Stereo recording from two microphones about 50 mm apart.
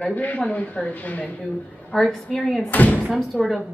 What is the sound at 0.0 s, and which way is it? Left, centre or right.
A woman's voice, left.